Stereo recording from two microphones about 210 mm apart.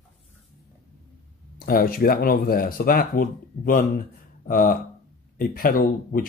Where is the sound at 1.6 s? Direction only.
45° left (ahead or behind).